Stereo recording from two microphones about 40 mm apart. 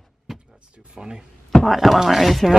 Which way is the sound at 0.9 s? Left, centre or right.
Centre.